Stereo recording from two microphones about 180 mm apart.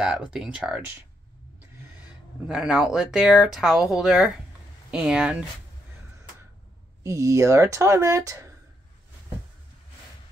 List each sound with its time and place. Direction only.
0.0 s speech: 5° right (ahead or behind)
2.4 s speech: 5° right (ahead or behind)
7.0 s speech: 15° right (ahead or behind)